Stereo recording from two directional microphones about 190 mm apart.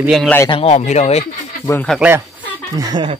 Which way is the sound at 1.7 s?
10° left (ahead or behind).